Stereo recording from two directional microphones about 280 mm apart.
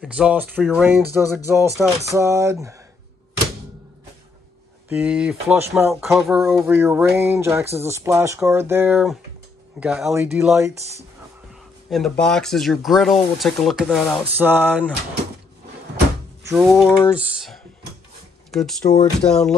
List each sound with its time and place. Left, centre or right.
0.0 s speech: centre
4.8 s speech: centre
10.8 s speech: right
11.9 s speech: centre
16.4 s speech: centre